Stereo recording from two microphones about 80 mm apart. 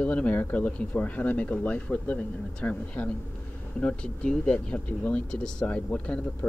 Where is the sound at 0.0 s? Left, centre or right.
Centre.